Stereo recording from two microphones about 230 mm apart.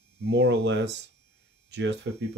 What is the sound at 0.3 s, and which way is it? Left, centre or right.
Speech, right.